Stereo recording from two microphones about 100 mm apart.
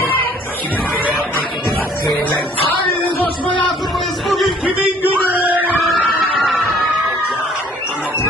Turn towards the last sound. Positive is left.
turn(degrees=0)  # may be behind; listen again after turning